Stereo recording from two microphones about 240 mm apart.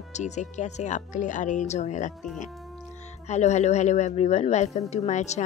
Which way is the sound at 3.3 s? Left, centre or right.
Left.